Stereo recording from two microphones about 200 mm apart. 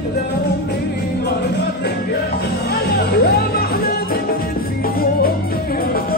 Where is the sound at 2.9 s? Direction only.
55° left (ahead or behind).